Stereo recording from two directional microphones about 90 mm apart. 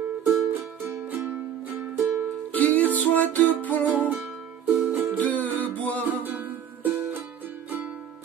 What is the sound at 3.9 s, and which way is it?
Music, 20° right (ahead or behind).